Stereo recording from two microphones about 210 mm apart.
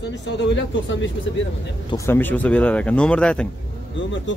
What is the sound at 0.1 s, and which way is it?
Speech, 60° left (ahead or behind).